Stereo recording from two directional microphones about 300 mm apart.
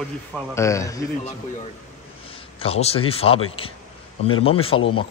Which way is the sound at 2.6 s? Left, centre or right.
Centre.